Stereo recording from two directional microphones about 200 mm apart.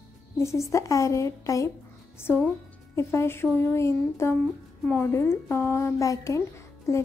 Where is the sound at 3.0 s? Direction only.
15° left (ahead or behind).